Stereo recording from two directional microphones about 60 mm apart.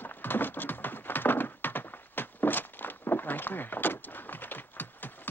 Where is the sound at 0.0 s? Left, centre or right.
Left.